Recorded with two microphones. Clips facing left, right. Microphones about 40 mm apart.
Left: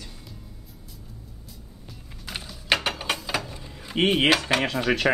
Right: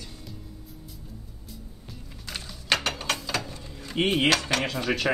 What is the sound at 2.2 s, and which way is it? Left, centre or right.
Music, centre.